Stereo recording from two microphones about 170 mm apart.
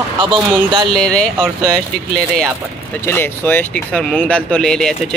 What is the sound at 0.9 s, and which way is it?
Speech, 5° left (ahead or behind).